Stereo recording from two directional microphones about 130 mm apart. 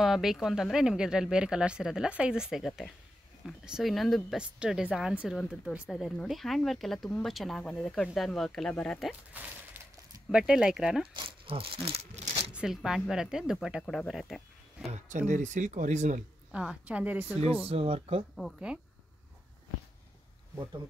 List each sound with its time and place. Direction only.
0.0 s speech: centre (ahead or behind)
10.3 s speech: 5° right (ahead or behind)
11.1 s speech: 45° right (ahead or behind)
12.5 s speech: 5° right (ahead or behind)
15.0 s speech: 70° right (ahead or behind)
16.5 s a woman's voice: 10° right (ahead or behind)
17.6 s speech: 50° right (ahead or behind)
18.3 s speech: centre (ahead or behind)